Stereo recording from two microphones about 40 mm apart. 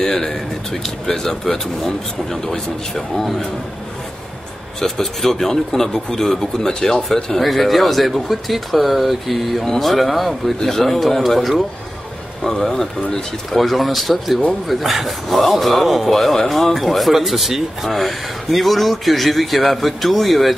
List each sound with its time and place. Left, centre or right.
0.0 s a sound: centre
1.0 s speech: centre
4.7 s speech: centre
7.4 s speech: centre
12.6 s speech: centre